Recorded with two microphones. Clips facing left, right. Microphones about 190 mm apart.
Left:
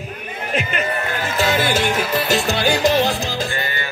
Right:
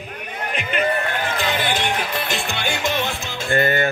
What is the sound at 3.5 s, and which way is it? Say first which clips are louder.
Music: right 8 dB; 50° right (ahead or behind).